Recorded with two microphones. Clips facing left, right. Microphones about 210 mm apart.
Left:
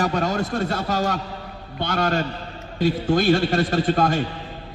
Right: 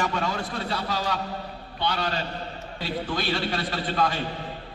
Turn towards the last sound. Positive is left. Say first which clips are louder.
# left 7 dB
turn(degrees=45)  # may be behind; listen again after turning